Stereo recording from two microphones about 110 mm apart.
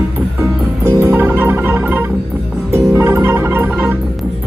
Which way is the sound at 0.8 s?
20° right (ahead or behind).